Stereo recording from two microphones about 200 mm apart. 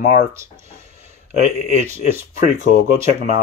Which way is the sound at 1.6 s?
35° right (ahead or behind).